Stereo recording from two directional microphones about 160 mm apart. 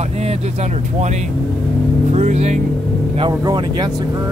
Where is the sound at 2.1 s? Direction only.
45° right (ahead or behind).